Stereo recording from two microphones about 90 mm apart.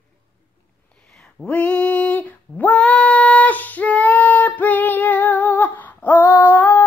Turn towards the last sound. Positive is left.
turn(degrees=20)  # may be behind; listen again after turning